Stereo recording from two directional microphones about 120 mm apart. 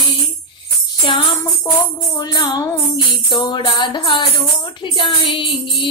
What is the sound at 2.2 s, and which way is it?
Music, 40° left (ahead or behind).